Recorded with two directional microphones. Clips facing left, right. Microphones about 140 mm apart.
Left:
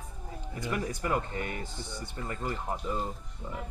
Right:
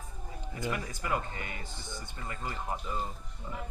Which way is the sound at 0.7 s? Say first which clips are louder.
Left 4 dB; 40° left (ahead or behind).